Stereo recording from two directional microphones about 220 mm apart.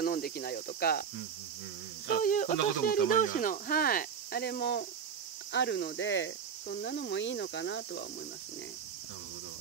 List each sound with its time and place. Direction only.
0.0 s speech: 40° left (ahead or behind)
2.2 s speech: 35° left (ahead or behind); by 8.0 s 55° left (ahead or behind)